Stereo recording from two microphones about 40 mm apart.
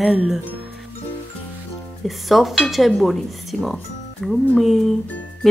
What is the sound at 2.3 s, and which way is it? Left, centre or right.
Speech, centre.